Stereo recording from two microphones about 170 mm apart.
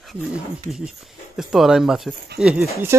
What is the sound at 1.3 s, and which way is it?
Speech, 5° right (ahead or behind).